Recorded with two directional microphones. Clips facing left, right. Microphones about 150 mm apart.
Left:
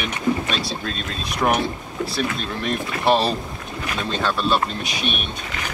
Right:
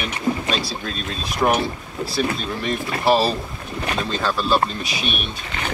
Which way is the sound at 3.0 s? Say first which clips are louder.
Right 1 dB; 5° right (ahead or behind).